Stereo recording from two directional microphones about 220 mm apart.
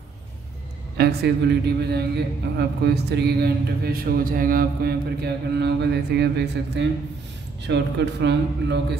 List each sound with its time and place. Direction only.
0.9 s a man's voice: 50° right (ahead or behind)